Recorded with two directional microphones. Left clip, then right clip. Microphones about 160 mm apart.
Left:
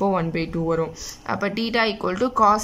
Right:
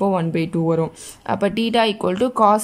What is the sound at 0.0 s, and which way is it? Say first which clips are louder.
A woman's voice: right 2 dB; 20° right (ahead or behind).